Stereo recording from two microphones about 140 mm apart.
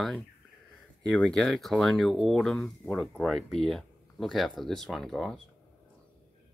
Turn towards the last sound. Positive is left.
turn(degrees=0)  # may be behind; listen again after turning